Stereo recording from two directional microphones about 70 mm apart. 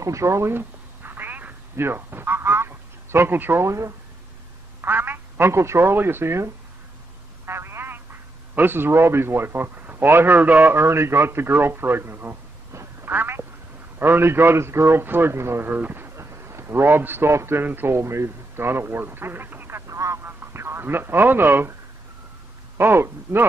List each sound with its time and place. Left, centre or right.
0.0 s telephone: right
3.6 s speech: right
4.8 s a man's voice: right
15.7 s speech: right
16.2 s a man's voice: right
19.9 s a sound: right
20.2 s speech: right
22.8 s speech: right